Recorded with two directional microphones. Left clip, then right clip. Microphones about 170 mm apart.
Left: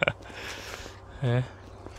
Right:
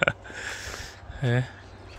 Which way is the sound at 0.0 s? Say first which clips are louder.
Right 3 dB; 20° right (ahead or behind).